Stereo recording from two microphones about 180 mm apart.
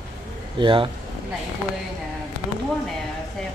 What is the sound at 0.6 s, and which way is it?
Speech, 25° right (ahead or behind).